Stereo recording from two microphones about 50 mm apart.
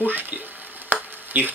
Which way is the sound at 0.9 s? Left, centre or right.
Right.